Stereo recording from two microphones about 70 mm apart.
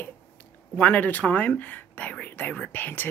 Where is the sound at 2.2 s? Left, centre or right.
Left.